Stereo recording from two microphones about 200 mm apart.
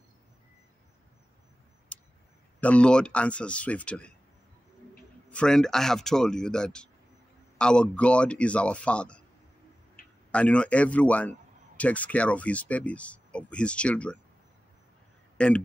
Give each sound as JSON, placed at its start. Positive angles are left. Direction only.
{"t": 1.9, "sound": "tick-tock", "side_deg": 5}
{"t": 2.6, "sound": "speech", "side_deg": 5}
{"t": 5.3, "sound": "speech", "side_deg": 5}
{"t": 10.0, "sound": "tick-tock", "side_deg": 45}
{"t": 10.3, "sound": "a man's voice", "side_deg": 5}
{"t": 15.3, "sound": "speech", "side_deg": 5}